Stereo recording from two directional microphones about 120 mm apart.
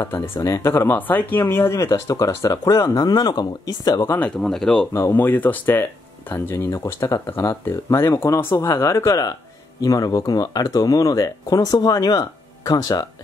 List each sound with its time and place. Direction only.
0.0 s speech: 20° left (ahead or behind)
4.0 s speech: 15° left (ahead or behind)
4.4 s speech: 5° left (ahead or behind)
4.9 s speech: 20° left (ahead or behind)